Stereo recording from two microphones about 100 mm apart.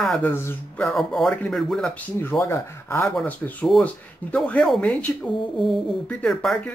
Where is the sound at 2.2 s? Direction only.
25° left (ahead or behind).